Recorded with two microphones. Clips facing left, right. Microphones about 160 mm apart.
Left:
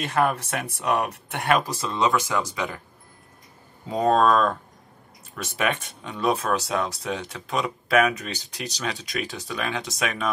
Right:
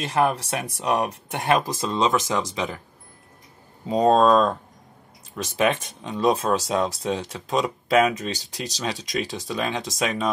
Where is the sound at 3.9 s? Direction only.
25° right (ahead or behind).